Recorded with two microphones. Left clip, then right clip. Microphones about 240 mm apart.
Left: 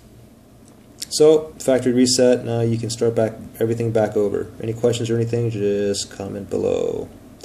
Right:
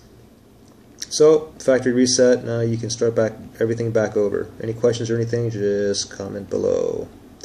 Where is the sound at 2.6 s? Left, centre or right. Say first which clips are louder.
Left 1 dB; right.